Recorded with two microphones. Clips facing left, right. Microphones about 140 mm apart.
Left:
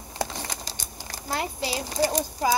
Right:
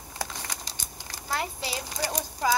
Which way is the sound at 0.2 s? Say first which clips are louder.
Left 5 dB; 30° left (ahead or behind).